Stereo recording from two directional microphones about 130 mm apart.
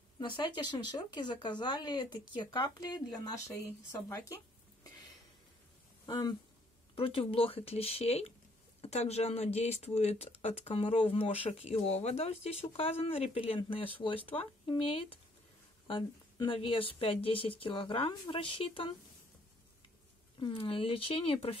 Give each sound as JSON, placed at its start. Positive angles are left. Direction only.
{"t": 0.2, "sound": "speech", "side_deg": 35}
{"t": 6.0, "sound": "speech", "side_deg": 35}
{"t": 20.3, "sound": "speech", "side_deg": 40}